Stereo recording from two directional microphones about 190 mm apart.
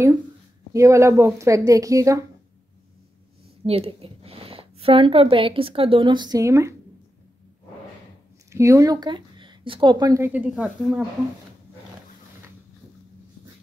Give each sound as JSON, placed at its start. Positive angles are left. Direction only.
{"t": 0.7, "sound": "speech", "side_deg": -15}
{"t": 3.6, "sound": "a woman's voice", "side_deg": -30}
{"t": 8.5, "sound": "speech", "side_deg": -15}